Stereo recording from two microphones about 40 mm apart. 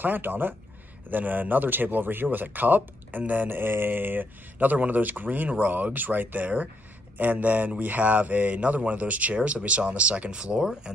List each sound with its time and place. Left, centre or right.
0.0 s speech: right
3.4 s speech: right; by 10.9 s centre